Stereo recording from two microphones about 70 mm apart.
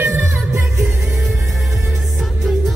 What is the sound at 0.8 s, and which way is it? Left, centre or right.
Music, centre.